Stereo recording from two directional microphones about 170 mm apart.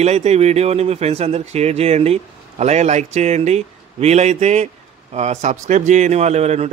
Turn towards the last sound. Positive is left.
turn(degrees=-40)  # may be behind; listen again after turning